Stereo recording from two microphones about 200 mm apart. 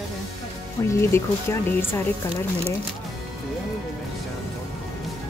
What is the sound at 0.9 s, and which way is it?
Speech, 15° left (ahead or behind).